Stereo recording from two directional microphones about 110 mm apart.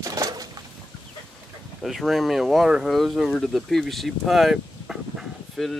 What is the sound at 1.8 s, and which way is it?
Speech, centre (ahead or behind).